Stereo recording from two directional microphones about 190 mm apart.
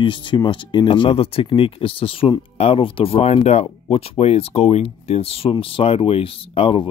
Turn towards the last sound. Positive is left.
turn(degrees=30)  # may be behind; listen again after turning